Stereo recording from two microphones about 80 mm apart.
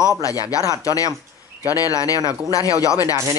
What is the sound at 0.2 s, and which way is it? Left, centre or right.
Speech, left.